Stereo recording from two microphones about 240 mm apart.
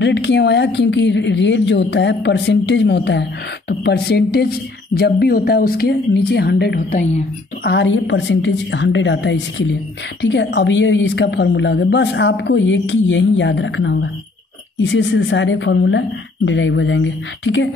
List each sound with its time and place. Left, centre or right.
0.0 s a woman's voice: left
7.7 s a woman's voice: left